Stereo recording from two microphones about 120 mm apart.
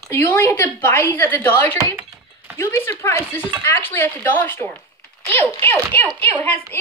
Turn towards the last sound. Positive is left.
turn(degrees=20)  # may be behind; listen again after turning